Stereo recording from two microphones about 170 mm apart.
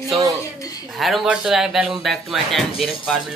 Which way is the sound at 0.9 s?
Centre (ahead or behind).